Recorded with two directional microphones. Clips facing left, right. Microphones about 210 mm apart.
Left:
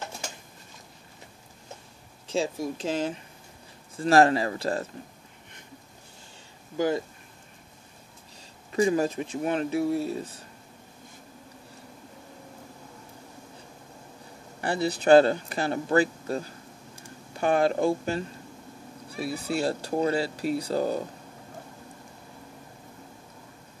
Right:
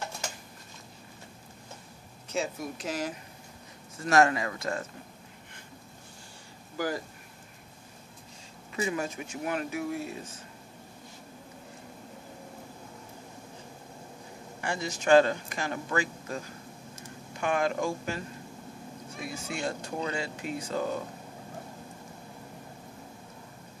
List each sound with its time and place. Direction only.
2.2 s speech: 30° left (ahead or behind)
6.8 s speech: 20° left (ahead or behind)
8.7 s speech: 35° left (ahead or behind)
14.6 s speech: 35° left (ahead or behind)